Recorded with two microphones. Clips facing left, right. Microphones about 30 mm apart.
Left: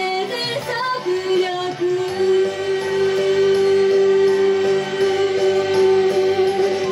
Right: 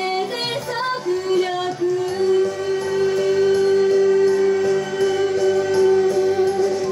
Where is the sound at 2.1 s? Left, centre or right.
Centre.